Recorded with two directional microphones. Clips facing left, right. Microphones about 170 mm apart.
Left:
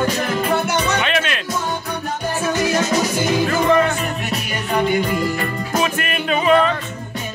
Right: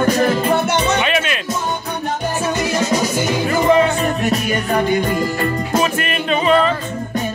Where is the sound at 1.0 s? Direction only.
5° right (ahead or behind).